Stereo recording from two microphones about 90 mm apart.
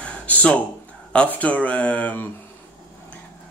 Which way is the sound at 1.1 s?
15° left (ahead or behind).